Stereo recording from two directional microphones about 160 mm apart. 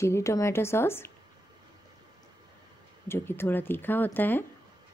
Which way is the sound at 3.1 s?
15° left (ahead or behind).